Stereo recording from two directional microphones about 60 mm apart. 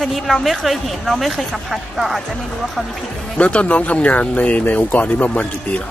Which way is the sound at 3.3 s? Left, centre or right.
Left.